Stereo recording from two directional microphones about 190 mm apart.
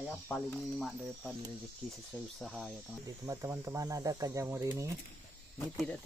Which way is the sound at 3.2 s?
15° right (ahead or behind).